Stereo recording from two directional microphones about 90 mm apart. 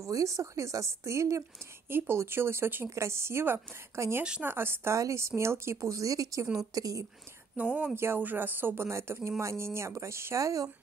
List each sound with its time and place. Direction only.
0.0 s speech: 35° right (ahead or behind)
4.2 s speech: 10° right (ahead or behind)
4.5 s speech: 25° right (ahead or behind); by 7.1 s 40° right (ahead or behind)
7.5 s speech: 15° right (ahead or behind); by 10.7 s 40° right (ahead or behind)